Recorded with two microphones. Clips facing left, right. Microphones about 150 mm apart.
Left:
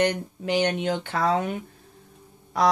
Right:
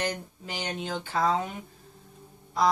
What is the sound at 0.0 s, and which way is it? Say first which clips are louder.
Speech: left 8 dB; 70° left (ahead or behind).